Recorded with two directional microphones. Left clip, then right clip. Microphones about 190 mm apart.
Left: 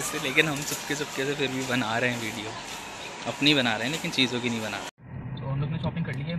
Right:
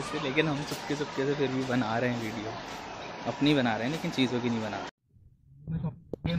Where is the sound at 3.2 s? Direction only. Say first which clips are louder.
Left 4 dB; 10° right (ahead or behind).